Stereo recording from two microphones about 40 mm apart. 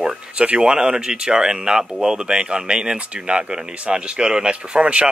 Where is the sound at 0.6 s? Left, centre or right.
Centre.